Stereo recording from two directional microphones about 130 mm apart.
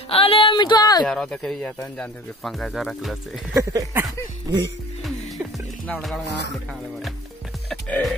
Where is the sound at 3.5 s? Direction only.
20° right (ahead or behind).